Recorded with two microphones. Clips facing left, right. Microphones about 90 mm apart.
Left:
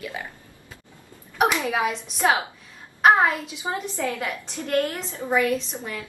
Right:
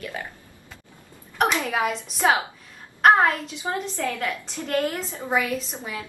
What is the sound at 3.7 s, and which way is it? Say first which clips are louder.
Speech: even; 15° left (ahead or behind).